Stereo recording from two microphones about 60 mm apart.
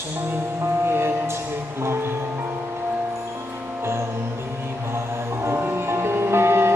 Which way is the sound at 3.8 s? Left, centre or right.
Right.